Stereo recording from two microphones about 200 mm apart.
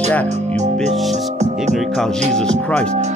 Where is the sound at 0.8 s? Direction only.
35° right (ahead or behind).